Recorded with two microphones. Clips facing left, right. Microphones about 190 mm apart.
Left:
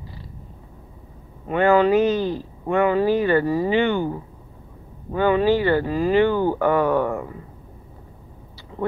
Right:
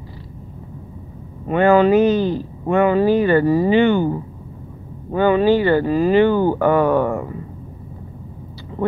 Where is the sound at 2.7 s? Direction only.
65° right (ahead or behind).